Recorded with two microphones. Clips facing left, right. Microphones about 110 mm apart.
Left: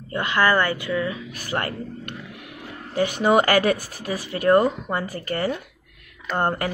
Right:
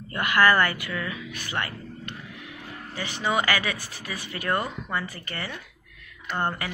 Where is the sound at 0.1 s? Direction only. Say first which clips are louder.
Left 1 dB; 20° left (ahead or behind).